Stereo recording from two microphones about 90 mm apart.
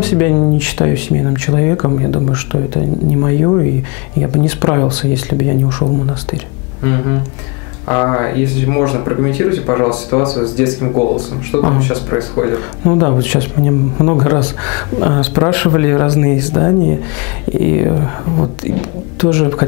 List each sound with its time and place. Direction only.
0.0 s speech: 15° left (ahead or behind)
7.9 s speech: 20° left (ahead or behind)